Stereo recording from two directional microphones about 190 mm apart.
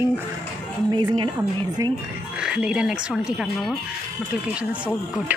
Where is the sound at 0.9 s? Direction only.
25° right (ahead or behind).